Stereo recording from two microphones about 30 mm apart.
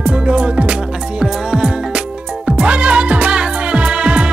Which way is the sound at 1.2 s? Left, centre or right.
Right.